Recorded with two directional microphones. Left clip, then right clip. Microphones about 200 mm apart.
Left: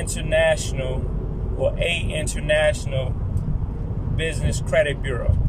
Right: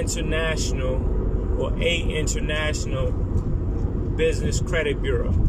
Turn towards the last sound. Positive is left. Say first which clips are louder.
# left 4 dB
turn(degrees=20)  # may be behind; listen again after turning